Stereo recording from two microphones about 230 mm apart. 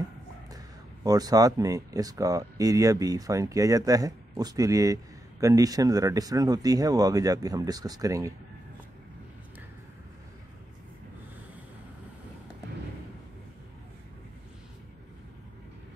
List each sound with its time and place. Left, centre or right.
1.0 s speech: centre